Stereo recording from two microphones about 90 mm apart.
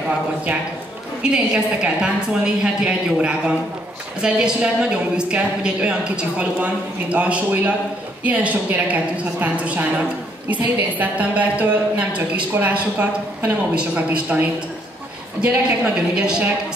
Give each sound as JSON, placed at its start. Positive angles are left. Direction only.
{"t": 1.2, "sound": "a woman's voice", "side_deg": -10}
{"t": 15.4, "sound": "a woman's voice", "side_deg": -10}